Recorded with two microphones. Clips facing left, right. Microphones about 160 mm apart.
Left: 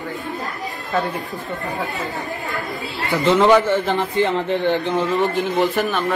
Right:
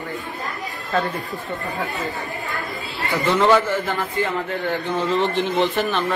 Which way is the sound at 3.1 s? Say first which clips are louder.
Left 3 dB; 20° left (ahead or behind).